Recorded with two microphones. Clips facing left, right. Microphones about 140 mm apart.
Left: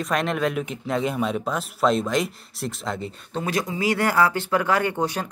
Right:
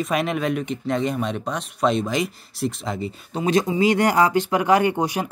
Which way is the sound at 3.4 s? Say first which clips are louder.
Right 6 dB; 20° right (ahead or behind).